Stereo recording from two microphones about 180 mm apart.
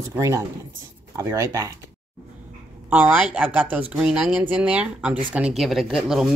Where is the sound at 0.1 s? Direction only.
15° right (ahead or behind).